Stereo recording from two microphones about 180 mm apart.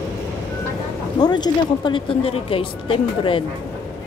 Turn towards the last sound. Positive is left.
turn(degrees=30)  # may be behind; listen again after turning